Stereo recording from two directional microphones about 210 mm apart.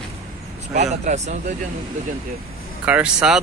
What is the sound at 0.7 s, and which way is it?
Speech, 35° right (ahead or behind).